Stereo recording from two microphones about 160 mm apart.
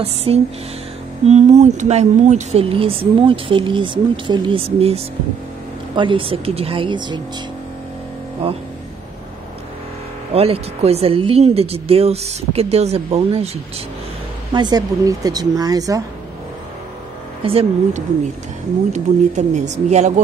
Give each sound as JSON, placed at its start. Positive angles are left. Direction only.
{"t": 0.0, "sound": "speech", "side_deg": -40}
{"t": 10.3, "sound": "speech", "side_deg": -40}
{"t": 14.5, "sound": "a woman's voice", "side_deg": -25}
{"t": 17.4, "sound": "speech", "side_deg": -35}
{"t": 18.9, "sound": "speech", "side_deg": -50}